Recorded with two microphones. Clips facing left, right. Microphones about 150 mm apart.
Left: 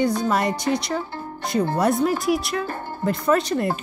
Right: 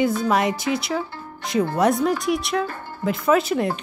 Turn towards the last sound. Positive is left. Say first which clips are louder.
# right 1 dB
turn(degrees=0)  # may be behind; listen again after turning